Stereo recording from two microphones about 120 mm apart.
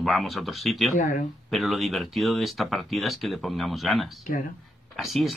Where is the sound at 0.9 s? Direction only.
90° left.